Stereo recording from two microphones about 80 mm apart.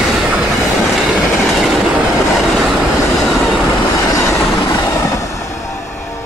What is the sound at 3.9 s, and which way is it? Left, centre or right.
Train, left.